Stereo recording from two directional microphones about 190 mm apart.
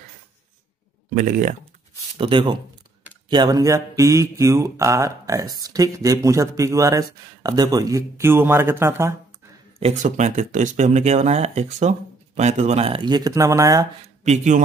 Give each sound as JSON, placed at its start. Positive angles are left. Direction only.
{"t": 1.1, "sound": "speech", "side_deg": -45}
{"t": 2.1, "sound": "speech", "side_deg": -25}
{"t": 9.8, "sound": "speech", "side_deg": -35}
{"t": 14.2, "sound": "speech", "side_deg": -40}